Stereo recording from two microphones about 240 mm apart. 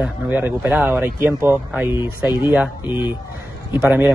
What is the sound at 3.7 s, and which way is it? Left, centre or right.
Speech, centre.